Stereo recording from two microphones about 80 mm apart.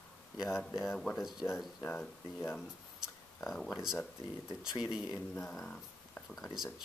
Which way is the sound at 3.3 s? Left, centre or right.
Centre.